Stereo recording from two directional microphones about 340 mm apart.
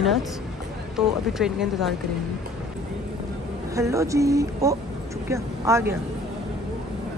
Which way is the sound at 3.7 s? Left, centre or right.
Centre.